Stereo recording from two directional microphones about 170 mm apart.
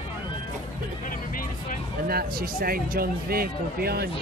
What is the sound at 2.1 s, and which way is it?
A man's voice, 60° right (ahead or behind).